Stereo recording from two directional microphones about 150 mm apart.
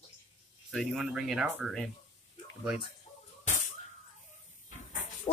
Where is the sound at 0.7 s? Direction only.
Centre (ahead or behind).